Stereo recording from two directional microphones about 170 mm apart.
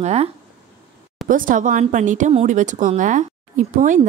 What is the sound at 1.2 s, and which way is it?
Speech, 55° right (ahead or behind).